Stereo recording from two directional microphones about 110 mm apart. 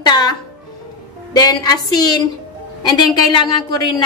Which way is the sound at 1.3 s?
35° left (ahead or behind).